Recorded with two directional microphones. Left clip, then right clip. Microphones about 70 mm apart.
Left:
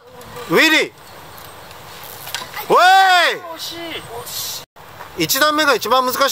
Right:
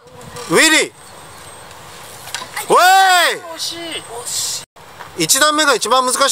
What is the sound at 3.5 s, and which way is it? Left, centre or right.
Speech, right.